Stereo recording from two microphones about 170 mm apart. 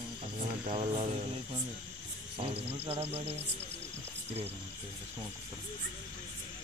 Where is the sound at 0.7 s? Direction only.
40° right (ahead or behind).